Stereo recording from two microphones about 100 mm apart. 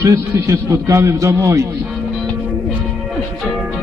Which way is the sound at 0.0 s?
30° right (ahead or behind).